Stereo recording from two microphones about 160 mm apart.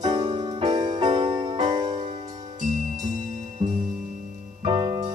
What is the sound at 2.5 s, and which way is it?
Music, 55° right (ahead or behind).